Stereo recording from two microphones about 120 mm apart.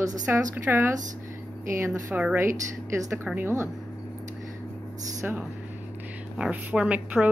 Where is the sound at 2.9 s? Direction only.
20° right (ahead or behind).